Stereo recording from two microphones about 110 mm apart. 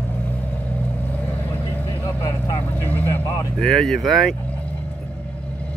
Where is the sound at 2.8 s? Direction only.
15° left (ahead or behind).